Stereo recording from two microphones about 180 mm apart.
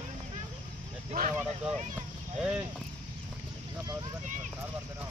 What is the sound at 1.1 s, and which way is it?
Speech, 40° right (ahead or behind).